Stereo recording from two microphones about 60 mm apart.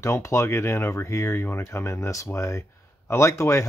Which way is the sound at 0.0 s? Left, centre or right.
Left.